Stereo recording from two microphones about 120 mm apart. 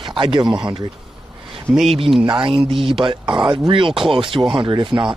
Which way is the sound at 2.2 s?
40° right (ahead or behind).